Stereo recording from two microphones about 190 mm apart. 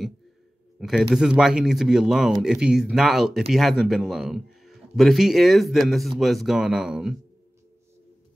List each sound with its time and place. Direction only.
0.7 s speech: centre (ahead or behind)